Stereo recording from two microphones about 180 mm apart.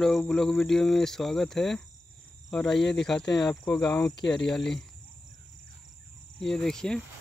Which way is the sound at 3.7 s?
20° left (ahead or behind).